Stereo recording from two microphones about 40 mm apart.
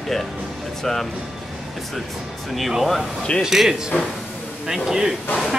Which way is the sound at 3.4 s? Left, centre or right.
Centre.